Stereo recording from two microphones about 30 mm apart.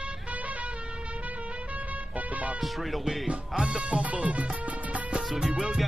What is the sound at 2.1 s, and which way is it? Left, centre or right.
Music, right.